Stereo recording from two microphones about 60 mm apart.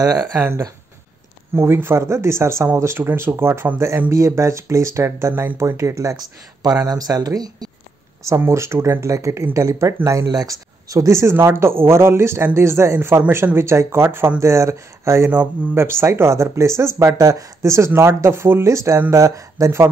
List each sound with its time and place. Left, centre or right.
1.5 s speech: right
2.0 s speech: right
3.0 s speech: right
6.6 s speech: right
8.4 s speech: right
9.0 s speech: right
10.0 s speech: right
11.1 s speech: right
14.4 s speech: right
19.1 s speech: right